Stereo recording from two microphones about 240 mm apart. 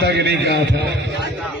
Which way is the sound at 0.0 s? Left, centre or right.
Right.